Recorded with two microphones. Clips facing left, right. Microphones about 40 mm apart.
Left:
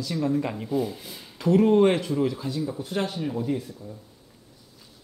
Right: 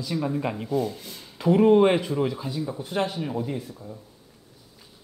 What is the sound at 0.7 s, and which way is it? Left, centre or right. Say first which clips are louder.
Speech: right 1 dB; centre.